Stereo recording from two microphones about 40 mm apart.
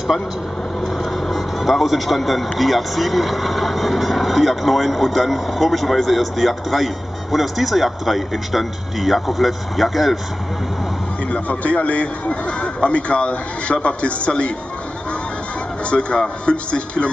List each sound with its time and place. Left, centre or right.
1.3 s speech: centre
11.4 s a man's voice: left
15.9 s speech: left